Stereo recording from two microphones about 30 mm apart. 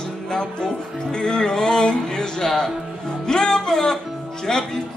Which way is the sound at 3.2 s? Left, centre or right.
Left.